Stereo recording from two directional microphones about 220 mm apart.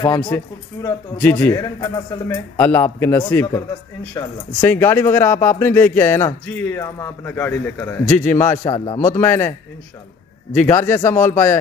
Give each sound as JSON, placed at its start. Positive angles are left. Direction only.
{"t": 0.0, "sound": "speech", "side_deg": 20}
{"t": 0.8, "sound": "speech", "side_deg": 5}
{"t": 10.6, "sound": "speech", "side_deg": 10}